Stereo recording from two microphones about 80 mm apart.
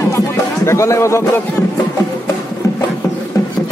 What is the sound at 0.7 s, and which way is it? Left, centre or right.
Speech, left.